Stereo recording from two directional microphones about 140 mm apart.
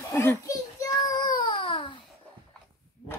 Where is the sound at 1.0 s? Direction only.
30° left (ahead or behind).